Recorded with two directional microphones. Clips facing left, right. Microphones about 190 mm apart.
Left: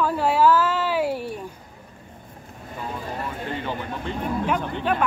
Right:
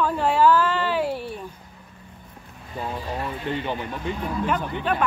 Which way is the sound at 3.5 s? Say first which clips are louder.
Right 3 dB; 20° right (ahead or behind).